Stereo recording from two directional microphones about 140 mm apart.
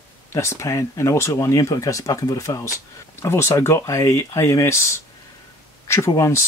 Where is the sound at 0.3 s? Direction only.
20° left (ahead or behind).